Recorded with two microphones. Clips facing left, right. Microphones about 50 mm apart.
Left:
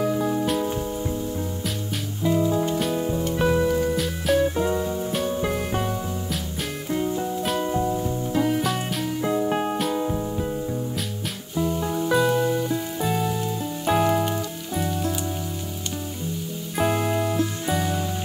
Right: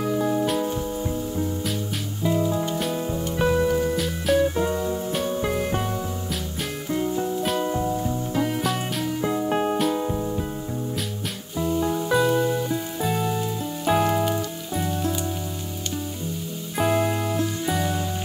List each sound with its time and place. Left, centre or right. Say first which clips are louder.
0.0 s music: even; centre
16.7 s music: right 1 dB; centre